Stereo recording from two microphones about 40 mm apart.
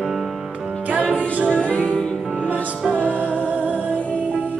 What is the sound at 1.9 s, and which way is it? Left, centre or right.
Music, centre.